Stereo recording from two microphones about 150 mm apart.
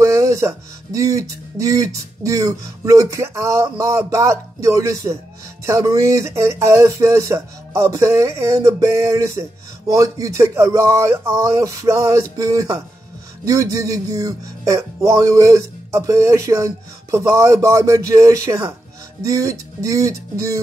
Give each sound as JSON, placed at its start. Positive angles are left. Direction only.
{"t": 0.0, "sound": "speech", "side_deg": -20}